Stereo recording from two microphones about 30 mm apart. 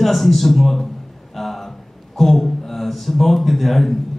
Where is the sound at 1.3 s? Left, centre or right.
Centre.